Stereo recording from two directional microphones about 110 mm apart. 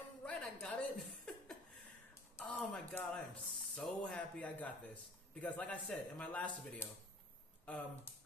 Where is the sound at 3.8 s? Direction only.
10° left (ahead or behind).